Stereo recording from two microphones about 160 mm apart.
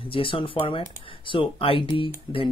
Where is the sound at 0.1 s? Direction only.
35° left (ahead or behind).